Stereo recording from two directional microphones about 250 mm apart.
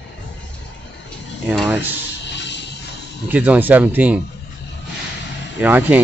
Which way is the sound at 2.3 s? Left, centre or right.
Left.